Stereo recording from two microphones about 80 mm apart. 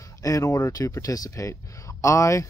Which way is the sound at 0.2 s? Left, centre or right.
Left.